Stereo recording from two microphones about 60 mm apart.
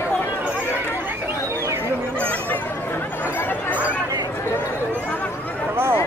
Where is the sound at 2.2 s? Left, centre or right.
Left.